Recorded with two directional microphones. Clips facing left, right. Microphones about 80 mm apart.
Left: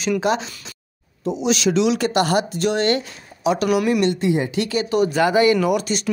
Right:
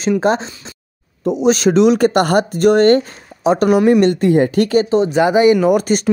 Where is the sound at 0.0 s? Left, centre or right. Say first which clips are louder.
Right 5 dB; right.